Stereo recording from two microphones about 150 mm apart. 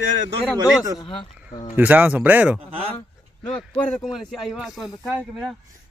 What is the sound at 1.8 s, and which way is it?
Speech, 10° right (ahead or behind).